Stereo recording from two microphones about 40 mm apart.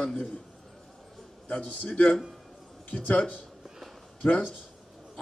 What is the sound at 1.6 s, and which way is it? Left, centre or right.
Speech, left.